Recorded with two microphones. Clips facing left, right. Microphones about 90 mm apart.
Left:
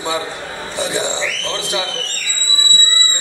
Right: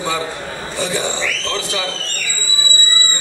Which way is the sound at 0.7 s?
20° left (ahead or behind).